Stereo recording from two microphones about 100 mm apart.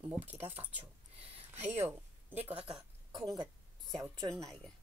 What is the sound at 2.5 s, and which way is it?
Speech, 10° right (ahead or behind).